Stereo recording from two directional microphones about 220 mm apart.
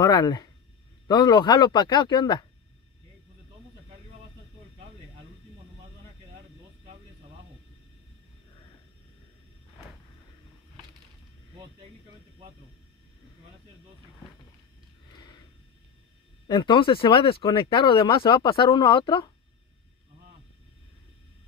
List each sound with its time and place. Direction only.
0.0 s speech: 20° left (ahead or behind)
16.4 s speech: 20° left (ahead or behind)